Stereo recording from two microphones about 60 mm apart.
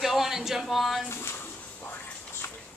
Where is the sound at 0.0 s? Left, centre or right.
Centre.